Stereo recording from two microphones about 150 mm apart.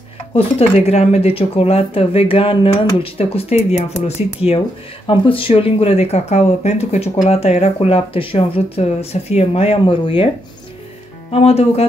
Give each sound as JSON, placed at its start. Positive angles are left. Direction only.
{"t": 0.3, "sound": "speech", "side_deg": 40}
{"t": 11.2, "sound": "speech", "side_deg": 40}